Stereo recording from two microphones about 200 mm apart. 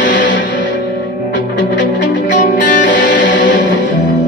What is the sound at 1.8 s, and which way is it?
Music, 65° left (ahead or behind).